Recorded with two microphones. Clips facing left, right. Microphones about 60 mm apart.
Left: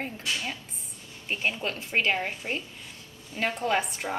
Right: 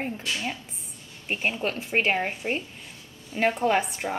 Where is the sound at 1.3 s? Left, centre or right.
Right.